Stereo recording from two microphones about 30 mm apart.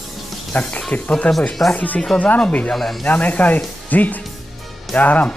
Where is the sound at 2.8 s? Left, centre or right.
Centre.